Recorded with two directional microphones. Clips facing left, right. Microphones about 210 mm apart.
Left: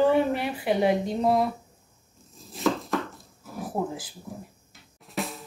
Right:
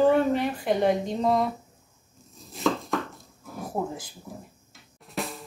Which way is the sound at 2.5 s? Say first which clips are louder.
Even; centre (ahead or behind).